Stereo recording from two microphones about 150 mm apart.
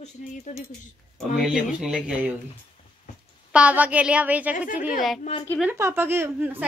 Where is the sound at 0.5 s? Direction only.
45° left (ahead or behind).